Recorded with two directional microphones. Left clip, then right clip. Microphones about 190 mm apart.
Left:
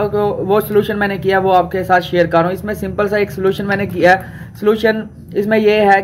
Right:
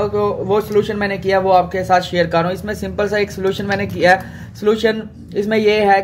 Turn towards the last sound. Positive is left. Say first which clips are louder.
# left 2 dB
turn(degrees=10)  # may be behind; listen again after turning